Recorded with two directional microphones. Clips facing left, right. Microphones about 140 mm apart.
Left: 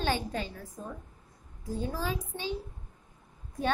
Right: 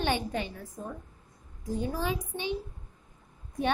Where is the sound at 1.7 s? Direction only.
15° right (ahead or behind).